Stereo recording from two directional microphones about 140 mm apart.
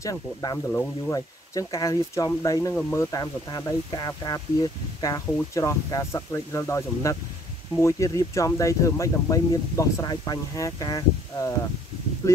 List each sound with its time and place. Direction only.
0.0 s speech: 25° left (ahead or behind)
2.7 s speech: 15° left (ahead or behind)